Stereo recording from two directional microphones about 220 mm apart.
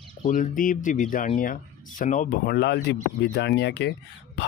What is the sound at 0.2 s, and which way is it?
Speech, 35° left (ahead or behind).